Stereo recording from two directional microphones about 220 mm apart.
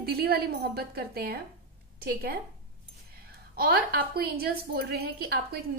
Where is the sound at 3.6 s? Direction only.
45° right (ahead or behind).